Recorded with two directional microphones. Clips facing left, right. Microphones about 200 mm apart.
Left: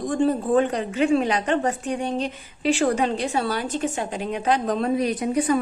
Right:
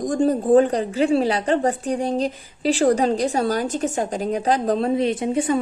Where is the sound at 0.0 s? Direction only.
40° right (ahead or behind).